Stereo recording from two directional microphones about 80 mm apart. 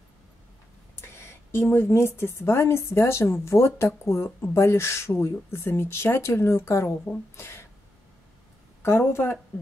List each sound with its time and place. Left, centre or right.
1.0 s a woman's voice: left
8.8 s a woman's voice: left